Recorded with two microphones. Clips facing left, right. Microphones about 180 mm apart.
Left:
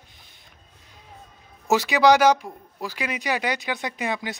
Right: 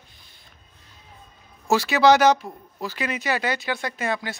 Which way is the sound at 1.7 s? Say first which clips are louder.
Even; 15° left (ahead or behind).